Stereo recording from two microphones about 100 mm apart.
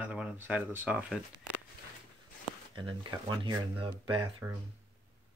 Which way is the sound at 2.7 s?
55° right (ahead or behind).